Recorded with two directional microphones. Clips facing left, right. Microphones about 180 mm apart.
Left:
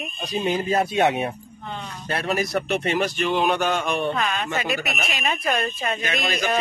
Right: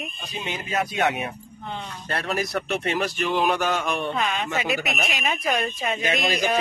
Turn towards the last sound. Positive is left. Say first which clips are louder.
# right 1 dB
turn(degrees=-10)  # may be behind; listen again after turning